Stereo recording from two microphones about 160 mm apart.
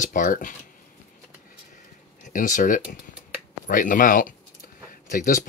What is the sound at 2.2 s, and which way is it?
Speech, 55° left (ahead or behind).